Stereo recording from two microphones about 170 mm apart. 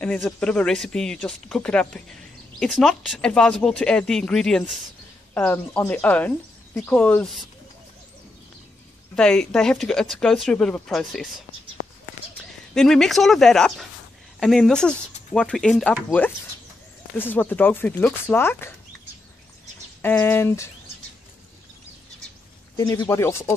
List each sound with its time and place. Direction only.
0.0 s speech: 5° left (ahead or behind)
9.1 s speech: 5° left (ahead or behind)
11.8 s bird: 80° right
12.7 s speech: centre (ahead or behind)
20.0 s speech: 10° left (ahead or behind)
22.8 s speech: 20° left (ahead or behind)